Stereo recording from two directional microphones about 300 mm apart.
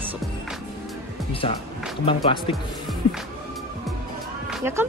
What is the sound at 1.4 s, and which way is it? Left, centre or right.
Speech, centre.